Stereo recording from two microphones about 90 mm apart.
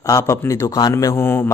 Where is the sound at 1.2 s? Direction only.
25° left (ahead or behind).